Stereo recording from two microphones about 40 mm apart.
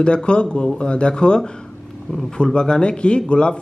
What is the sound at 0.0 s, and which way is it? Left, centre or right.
A man's voice, left.